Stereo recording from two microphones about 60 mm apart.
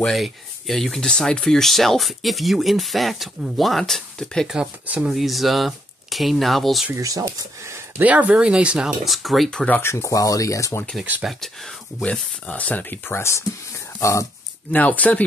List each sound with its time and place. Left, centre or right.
0.0 s speech: centre
4.8 s speech: right
5.1 s speech: centre
7.0 s speech: right
8.0 s speech: right; by 9.5 s centre
9.8 s speech: left
10.0 s speech: left
11.2 s speech: centre
12.1 s speech: left
13.0 s speech: left
14.7 s speech: left